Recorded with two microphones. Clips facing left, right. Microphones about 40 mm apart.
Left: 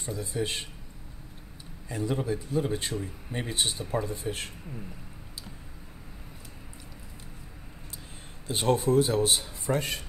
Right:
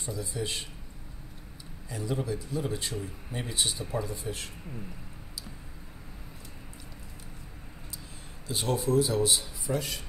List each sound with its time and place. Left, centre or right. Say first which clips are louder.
0.0 s speech: left 3 dB; left
1.9 s speech: left 3 dB; left
8.5 s speech: left 4 dB; left